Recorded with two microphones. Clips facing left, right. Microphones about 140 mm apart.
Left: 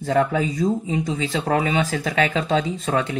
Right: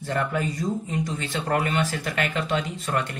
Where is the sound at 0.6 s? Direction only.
80° left.